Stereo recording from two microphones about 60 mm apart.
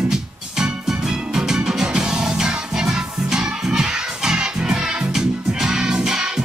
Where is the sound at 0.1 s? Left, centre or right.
Centre.